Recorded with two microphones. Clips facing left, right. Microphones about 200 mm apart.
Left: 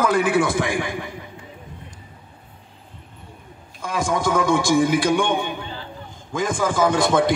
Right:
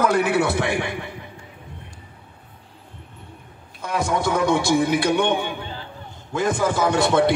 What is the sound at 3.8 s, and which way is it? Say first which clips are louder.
A man's voice: even; 65° right (ahead or behind).